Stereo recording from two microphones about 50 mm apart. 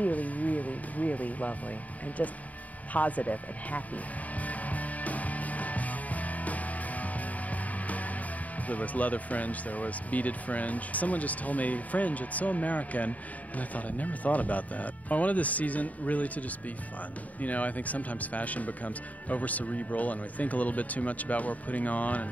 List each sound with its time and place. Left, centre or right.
0.0 s a sound: left
2.2 s speech: left
2.9 s music: left
8.6 s speech: left